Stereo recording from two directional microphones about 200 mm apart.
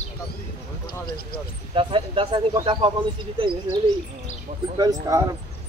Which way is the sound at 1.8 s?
25° right (ahead or behind).